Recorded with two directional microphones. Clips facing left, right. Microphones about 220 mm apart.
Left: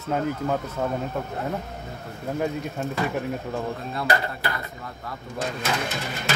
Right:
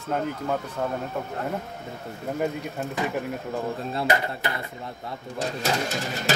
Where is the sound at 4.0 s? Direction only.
25° right (ahead or behind).